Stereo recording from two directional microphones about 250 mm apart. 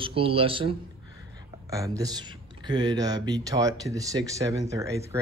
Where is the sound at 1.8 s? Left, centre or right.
Centre.